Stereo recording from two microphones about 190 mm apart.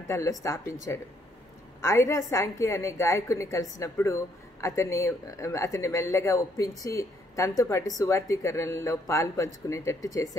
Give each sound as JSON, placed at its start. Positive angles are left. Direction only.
{"t": 0.1, "sound": "a woman's voice", "side_deg": 15}